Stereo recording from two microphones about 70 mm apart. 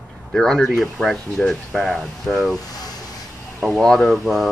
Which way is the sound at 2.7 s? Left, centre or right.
Left.